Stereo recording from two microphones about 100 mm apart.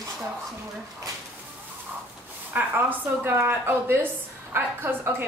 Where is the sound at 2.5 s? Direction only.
20° right (ahead or behind).